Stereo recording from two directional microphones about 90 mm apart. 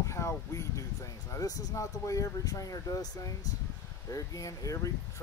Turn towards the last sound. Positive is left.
turn(degrees=40)  # may be behind; listen again after turning